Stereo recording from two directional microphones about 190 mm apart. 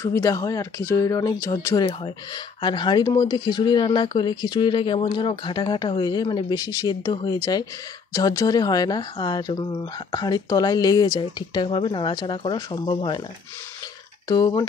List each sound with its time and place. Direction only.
0.0 s speech: 15° left (ahead or behind)
14.2 s speech: 20° left (ahead or behind)